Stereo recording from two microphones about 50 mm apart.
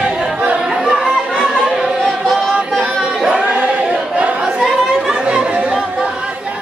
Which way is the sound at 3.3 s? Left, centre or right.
Right.